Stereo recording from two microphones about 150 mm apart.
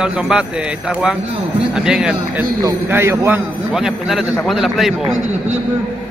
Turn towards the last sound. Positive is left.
turn(degrees=0)  # may be behind; listen again after turning